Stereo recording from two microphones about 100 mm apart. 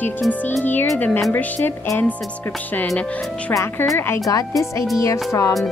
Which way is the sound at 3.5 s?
25° left (ahead or behind).